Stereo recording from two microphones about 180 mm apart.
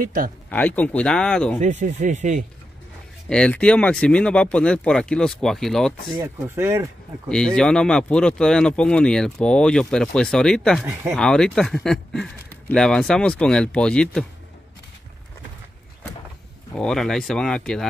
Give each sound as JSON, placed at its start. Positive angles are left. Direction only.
{"t": 0.0, "sound": "speech", "side_deg": -50}
{"t": 0.5, "sound": "speech", "side_deg": 10}
{"t": 1.6, "sound": "speech", "side_deg": -40}
{"t": 3.3, "sound": "speech", "side_deg": 5}
{"t": 6.1, "sound": "speech", "side_deg": -15}
{"t": 7.2, "sound": "speech", "side_deg": 5}
{"t": 16.7, "sound": "speech", "side_deg": 5}